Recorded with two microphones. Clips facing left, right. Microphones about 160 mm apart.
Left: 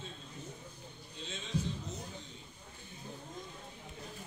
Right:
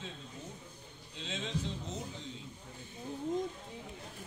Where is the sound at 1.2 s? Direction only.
90° right.